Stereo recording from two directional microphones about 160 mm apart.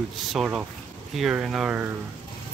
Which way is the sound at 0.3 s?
5° right (ahead or behind).